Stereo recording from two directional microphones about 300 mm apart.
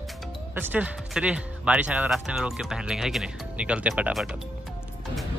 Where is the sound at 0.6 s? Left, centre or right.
Centre.